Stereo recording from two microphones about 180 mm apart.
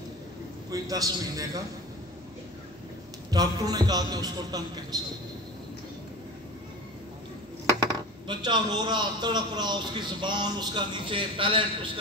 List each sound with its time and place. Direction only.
0.7 s a man's voice: 20° right (ahead or behind)
3.3 s a man's voice: 20° right (ahead or behind)
7.8 s a man's voice: 25° right (ahead or behind)